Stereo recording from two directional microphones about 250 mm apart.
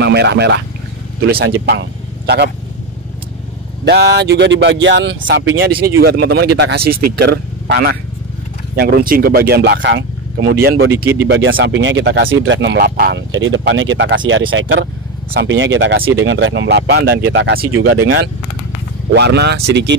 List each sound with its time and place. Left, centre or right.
0.0 s speech: right
3.8 s speech: right
5.7 s speech: right
10.9 s speech: centre
11.2 s speech: right